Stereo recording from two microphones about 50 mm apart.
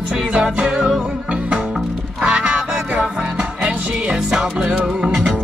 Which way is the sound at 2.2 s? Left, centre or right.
Right.